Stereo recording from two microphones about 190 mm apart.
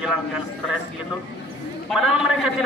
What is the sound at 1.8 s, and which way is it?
Speech, centre (ahead or behind).